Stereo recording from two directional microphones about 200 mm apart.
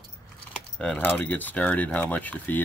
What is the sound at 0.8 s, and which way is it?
Speech, 5° left (ahead or behind).